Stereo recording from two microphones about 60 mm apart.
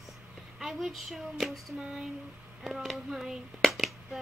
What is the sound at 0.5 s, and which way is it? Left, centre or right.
Speech, centre.